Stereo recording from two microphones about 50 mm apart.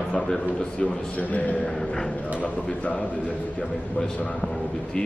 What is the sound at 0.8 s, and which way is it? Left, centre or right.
Speech, left.